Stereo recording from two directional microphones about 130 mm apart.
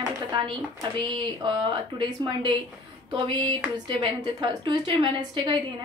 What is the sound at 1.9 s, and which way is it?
Speech, 35° right (ahead or behind).